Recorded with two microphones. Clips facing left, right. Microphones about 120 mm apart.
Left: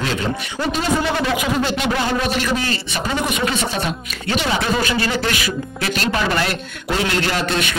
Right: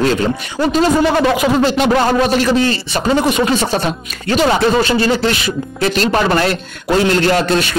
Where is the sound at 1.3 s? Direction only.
40° right (ahead or behind).